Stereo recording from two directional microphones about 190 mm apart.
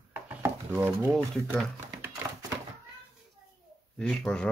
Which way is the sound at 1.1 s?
5° left (ahead or behind).